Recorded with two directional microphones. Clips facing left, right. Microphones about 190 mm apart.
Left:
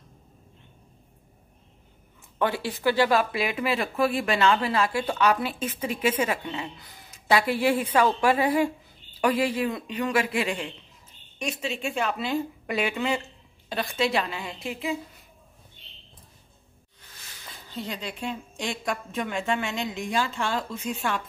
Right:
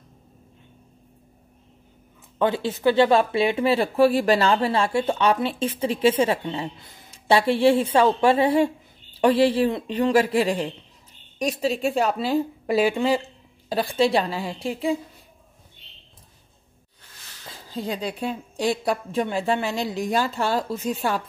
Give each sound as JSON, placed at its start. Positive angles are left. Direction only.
{"t": 2.3, "sound": "a woman's voice", "side_deg": -20}
{"t": 17.6, "sound": "a woman's voice", "side_deg": -35}